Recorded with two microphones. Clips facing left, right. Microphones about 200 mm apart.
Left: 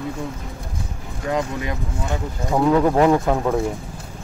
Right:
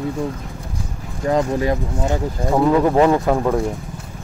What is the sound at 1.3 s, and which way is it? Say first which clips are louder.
Speech: right 6 dB; 35° right (ahead or behind).